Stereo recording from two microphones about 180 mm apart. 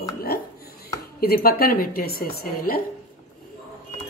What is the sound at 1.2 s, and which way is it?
A woman's voice, 55° left (ahead or behind).